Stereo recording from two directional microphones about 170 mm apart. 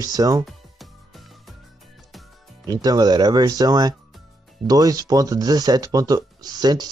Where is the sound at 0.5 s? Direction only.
Centre (ahead or behind).